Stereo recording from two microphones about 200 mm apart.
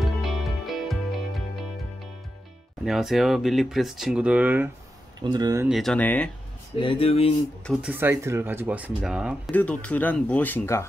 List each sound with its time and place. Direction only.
0.2 s music: centre (ahead or behind)
2.8 s speech: centre (ahead or behind)
5.2 s speech: 20° right (ahead or behind)
5.7 s speech: centre (ahead or behind)
6.8 s speech: 25° left (ahead or behind)
7.6 s speech: 5° right (ahead or behind)
9.5 s speech: 5° left (ahead or behind)